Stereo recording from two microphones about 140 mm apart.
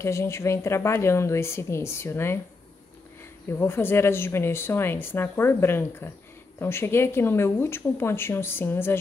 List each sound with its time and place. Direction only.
0.0 s a woman's voice: 20° left (ahead or behind)
3.4 s speech: 20° left (ahead or behind)